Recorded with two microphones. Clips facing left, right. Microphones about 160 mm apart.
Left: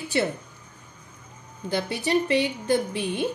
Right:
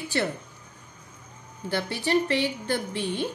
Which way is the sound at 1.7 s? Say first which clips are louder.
Left 1 dB; 15° left (ahead or behind).